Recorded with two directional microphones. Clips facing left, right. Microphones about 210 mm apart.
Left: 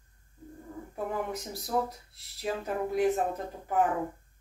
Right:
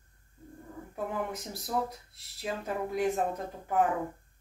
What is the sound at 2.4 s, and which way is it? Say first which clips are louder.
Speech: left 2 dB; centre (ahead or behind).